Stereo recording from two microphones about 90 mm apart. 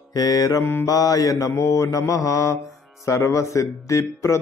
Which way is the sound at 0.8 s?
40° left (ahead or behind).